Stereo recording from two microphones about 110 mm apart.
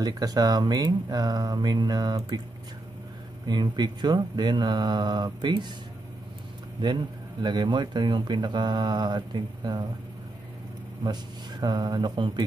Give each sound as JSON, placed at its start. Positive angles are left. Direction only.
{"t": 0.0, "sound": "speech", "side_deg": -35}
{"t": 3.4, "sound": "speech", "side_deg": -40}
{"t": 7.4, "sound": "speech", "side_deg": -45}
{"t": 11.6, "sound": "speech", "side_deg": -40}